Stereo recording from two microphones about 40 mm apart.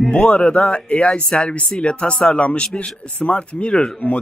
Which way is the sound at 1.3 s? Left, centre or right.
Centre.